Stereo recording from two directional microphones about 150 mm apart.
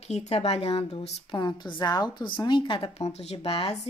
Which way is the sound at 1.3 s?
30° left (ahead or behind).